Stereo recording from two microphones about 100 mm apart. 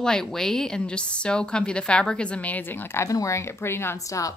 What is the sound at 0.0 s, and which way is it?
A woman's voice, 5° left (ahead or behind).